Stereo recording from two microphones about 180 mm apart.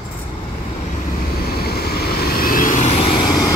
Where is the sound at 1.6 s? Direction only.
60° left (ahead or behind); by 3.0 s 40° left (ahead or behind).